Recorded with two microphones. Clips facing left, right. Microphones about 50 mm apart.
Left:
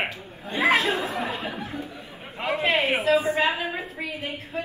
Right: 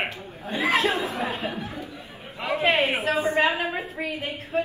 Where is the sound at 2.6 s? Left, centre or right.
Right.